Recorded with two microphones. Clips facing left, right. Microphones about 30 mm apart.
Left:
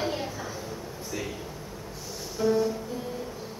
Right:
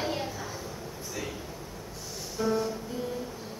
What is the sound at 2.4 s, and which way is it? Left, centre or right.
Music, centre.